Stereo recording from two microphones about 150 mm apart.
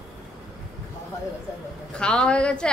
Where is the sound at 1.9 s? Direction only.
5° left (ahead or behind).